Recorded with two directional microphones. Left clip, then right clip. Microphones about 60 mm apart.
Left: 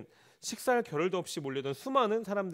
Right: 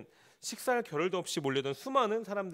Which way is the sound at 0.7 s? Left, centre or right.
Left.